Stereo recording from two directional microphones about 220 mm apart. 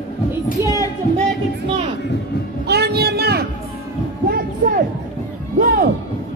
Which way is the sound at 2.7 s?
50° right (ahead or behind).